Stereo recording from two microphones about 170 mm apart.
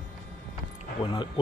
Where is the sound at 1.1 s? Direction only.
25° left (ahead or behind).